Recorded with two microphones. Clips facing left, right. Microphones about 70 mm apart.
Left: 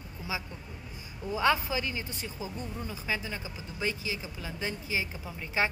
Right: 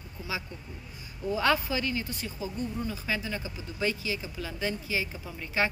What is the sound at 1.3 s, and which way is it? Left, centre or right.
A woman's voice, centre.